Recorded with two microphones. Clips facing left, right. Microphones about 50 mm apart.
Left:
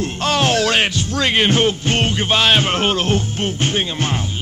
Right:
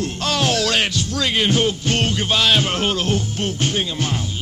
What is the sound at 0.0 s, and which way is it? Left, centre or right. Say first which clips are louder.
Music: left 3 dB; left.